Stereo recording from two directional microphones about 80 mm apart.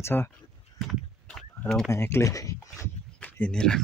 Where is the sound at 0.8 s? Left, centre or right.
Centre.